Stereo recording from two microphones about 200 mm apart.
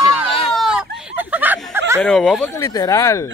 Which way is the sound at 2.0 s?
5° left (ahead or behind).